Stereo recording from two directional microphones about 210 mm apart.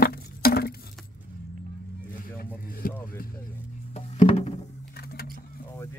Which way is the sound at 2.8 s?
45° left (ahead or behind).